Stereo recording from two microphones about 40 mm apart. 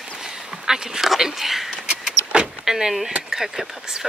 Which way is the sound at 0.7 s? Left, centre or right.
Centre.